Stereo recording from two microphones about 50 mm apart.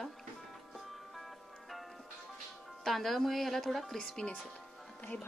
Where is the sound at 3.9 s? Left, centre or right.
Centre.